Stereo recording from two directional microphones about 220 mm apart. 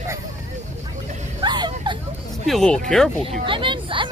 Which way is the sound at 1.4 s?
20° right (ahead or behind).